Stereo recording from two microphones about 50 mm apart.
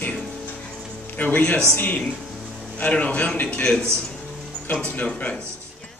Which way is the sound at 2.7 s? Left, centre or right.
Left.